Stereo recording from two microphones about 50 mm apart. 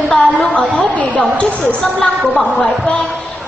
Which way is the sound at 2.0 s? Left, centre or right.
Centre.